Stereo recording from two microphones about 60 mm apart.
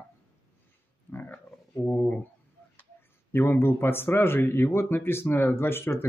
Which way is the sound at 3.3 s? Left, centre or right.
Left.